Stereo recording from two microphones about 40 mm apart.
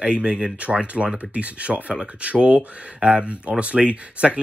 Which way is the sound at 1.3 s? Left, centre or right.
Right.